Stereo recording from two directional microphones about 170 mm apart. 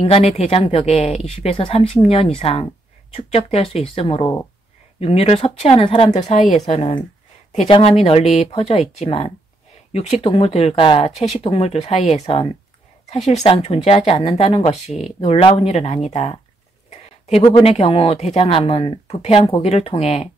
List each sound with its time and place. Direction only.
0.0 s speech: 35° left (ahead or behind)
17.3 s speech: 30° left (ahead or behind)